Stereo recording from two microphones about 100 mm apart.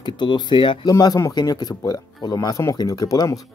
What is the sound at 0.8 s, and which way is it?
Speech, 40° left (ahead or behind).